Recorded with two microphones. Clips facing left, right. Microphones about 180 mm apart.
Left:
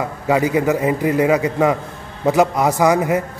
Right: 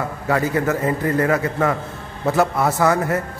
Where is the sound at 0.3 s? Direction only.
15° left (ahead or behind).